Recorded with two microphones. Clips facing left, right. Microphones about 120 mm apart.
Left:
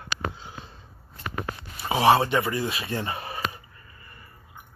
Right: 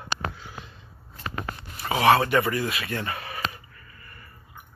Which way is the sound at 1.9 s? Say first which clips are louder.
Even; 25° left (ahead or behind).